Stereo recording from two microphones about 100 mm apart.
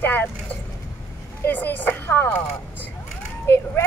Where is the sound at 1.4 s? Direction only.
20° left (ahead or behind).